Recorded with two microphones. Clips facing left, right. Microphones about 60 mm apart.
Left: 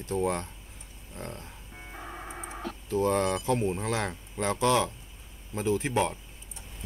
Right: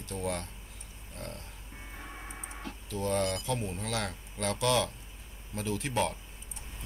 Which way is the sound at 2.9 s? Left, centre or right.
Left.